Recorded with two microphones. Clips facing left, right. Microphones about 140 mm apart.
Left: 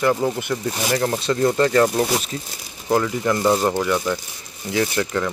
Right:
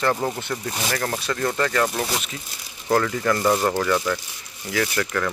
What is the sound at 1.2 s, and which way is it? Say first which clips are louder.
Speech: left 7 dB; 25° left (ahead or behind).